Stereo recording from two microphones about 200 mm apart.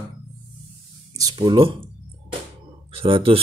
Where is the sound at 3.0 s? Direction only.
25° right (ahead or behind).